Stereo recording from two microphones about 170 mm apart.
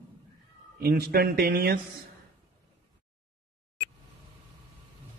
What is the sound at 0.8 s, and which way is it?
Speech, 65° right (ahead or behind).